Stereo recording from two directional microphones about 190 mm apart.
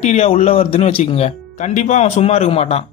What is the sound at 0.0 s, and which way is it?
Speech, 35° left (ahead or behind).